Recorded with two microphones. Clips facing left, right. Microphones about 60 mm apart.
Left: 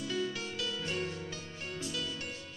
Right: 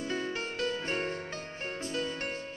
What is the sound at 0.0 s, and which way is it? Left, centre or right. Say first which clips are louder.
Music: right 2 dB; right.